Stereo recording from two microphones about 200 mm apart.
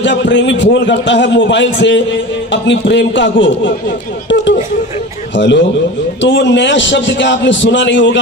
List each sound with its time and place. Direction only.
0.0 s a man's voice: 65° left (ahead or behind)
5.3 s a man's voice: 65° left (ahead or behind)